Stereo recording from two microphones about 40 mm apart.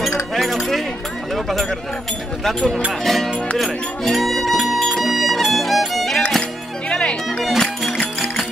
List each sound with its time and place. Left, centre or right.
0.0 s keys jangling: centre
1.3 s a sound: centre
2.4 s speech: centre
4.1 s music: centre
6.9 s music: left
7.2 s music: centre